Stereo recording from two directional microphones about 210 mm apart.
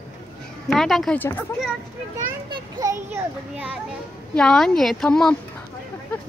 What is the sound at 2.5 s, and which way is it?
Children playing, 15° right (ahead or behind).